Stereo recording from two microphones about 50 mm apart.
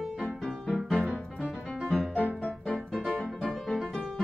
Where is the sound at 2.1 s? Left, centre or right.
Left.